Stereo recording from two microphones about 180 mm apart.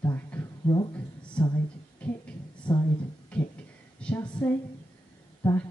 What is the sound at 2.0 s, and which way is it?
Heart murmur, 5° left (ahead or behind).